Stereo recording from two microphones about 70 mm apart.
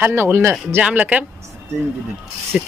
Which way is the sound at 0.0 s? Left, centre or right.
Right.